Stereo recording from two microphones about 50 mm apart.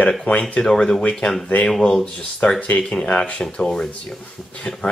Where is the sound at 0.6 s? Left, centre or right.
Centre.